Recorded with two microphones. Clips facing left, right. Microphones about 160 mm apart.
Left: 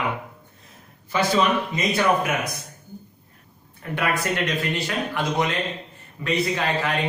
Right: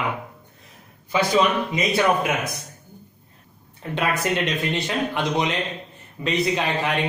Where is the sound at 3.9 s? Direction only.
20° right (ahead or behind).